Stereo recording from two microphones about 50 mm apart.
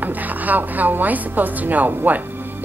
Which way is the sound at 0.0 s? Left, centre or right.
Right.